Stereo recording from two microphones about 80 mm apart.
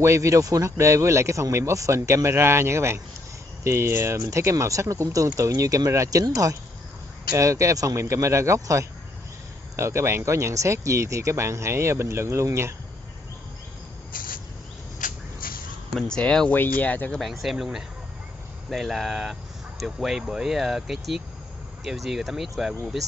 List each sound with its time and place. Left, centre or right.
0.0 s speech: right
15.9 s speech: centre
17.1 s speech: centre
18.7 s speech: centre